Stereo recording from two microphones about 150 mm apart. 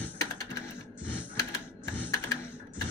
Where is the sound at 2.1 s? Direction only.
25° left (ahead or behind).